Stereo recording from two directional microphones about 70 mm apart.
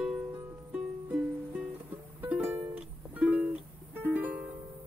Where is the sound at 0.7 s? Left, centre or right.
Centre.